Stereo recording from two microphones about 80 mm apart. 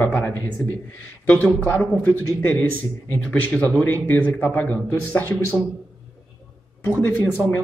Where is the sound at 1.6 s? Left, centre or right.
Left.